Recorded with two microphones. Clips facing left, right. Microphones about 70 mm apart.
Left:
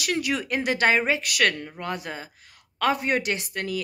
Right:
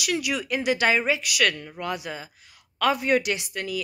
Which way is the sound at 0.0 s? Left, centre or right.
Left.